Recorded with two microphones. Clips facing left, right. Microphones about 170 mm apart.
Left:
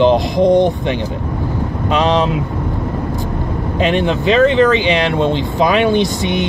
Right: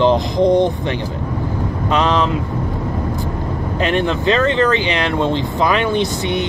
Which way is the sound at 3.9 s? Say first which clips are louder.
Left 2 dB; 15° left (ahead or behind).